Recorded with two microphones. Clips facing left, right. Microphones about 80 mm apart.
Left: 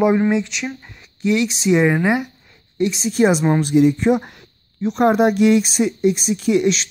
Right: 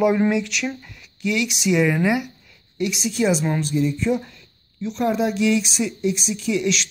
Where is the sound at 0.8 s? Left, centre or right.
Left.